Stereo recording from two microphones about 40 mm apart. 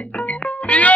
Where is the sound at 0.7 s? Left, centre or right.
Left.